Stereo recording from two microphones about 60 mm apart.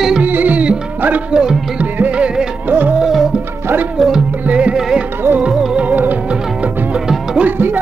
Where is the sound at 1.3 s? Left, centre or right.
Centre.